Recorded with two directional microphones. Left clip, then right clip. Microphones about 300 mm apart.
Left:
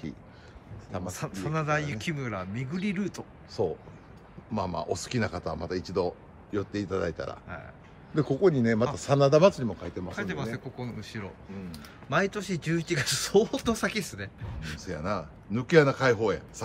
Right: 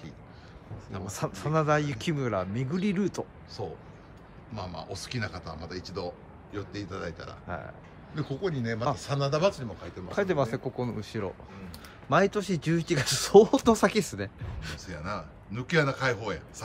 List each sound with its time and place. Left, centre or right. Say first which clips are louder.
1.0 s speech: right 5 dB; centre
3.6 s a man's voice: left 9 dB; centre
10.1 s speech: right 10 dB; centre
14.8 s a man's voice: left 5 dB; centre